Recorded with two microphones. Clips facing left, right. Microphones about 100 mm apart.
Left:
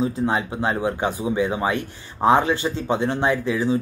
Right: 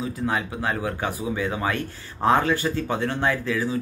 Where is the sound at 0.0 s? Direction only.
25° left (ahead or behind).